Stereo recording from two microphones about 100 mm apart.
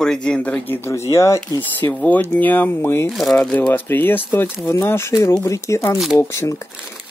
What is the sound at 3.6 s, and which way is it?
Speech, 20° left (ahead or behind).